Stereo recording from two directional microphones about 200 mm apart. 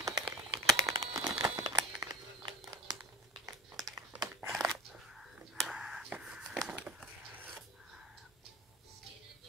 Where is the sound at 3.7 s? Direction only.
5° right (ahead or behind).